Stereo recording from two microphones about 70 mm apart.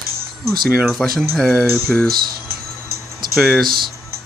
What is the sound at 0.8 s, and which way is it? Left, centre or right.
Speech, centre.